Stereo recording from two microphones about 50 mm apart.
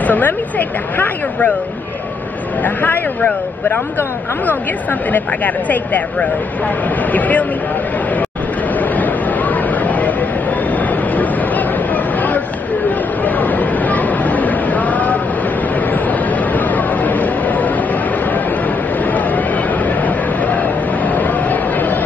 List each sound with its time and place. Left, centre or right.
0.0 s speech: left
2.6 s speech: left
5.1 s speech: left
8.7 s a sound: left
13.2 s chatter: left
15.9 s a sound: left
19.0 s chatter: left